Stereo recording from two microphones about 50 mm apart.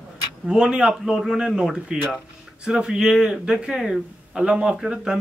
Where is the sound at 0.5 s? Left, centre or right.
Centre.